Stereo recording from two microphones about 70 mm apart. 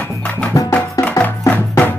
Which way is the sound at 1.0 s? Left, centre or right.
Left.